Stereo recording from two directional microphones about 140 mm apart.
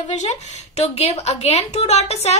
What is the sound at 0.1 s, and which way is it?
A woman's voice, 55° left (ahead or behind).